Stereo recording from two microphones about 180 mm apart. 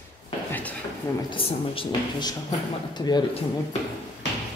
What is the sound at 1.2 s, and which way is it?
Speech, 30° left (ahead or behind).